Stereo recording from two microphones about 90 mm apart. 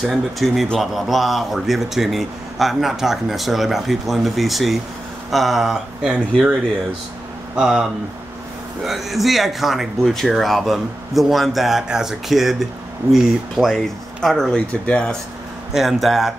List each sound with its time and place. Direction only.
0.0 s a man's voice: centre (ahead or behind)
7.5 s speech: 10° right (ahead or behind)
8.8 s a man's voice: centre (ahead or behind)
15.7 s a man's voice: 5° right (ahead or behind)